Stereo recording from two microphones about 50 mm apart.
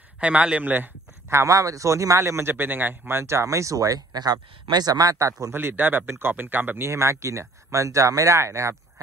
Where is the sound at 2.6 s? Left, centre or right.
Right.